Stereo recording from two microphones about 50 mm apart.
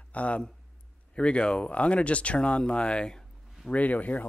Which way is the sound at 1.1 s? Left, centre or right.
Left.